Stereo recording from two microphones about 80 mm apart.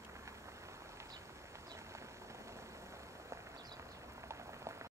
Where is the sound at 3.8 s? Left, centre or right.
Right.